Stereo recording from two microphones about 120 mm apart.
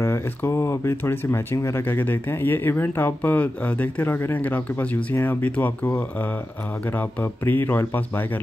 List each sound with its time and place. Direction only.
0.0 s speech: 20° left (ahead or behind)